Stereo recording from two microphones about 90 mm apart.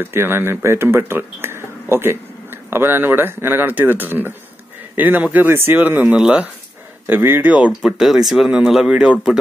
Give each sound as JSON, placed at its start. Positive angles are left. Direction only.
{"t": 0.0, "sound": "speech", "side_deg": -25}
{"t": 7.1, "sound": "speech", "side_deg": -25}
{"t": 7.8, "sound": "speech", "side_deg": -5}